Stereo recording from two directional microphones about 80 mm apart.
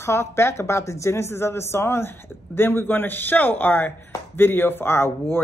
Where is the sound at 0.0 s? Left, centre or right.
Left.